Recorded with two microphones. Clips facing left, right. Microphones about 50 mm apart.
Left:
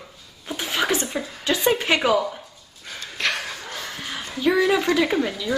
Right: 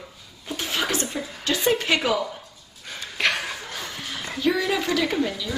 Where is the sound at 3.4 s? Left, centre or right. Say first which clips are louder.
Even; centre.